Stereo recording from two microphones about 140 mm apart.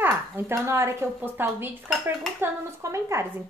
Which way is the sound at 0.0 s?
15° right (ahead or behind).